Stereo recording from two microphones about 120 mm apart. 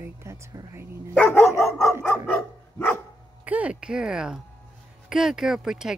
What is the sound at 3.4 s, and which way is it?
Speech, 10° right (ahead or behind).